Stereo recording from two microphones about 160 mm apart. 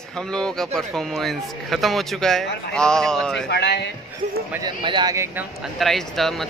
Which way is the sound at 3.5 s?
90° left.